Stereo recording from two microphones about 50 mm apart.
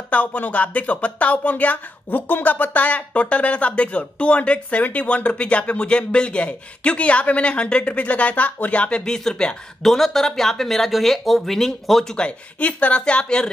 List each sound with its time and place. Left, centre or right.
0.1 s speech: left
9.0 s speech: centre
12.2 s speech: left